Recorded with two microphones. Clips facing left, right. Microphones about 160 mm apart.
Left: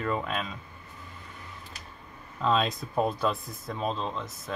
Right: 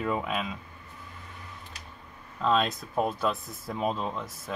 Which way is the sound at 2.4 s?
Centre (ahead or behind).